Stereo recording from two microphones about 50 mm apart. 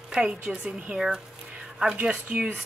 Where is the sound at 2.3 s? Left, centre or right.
Right.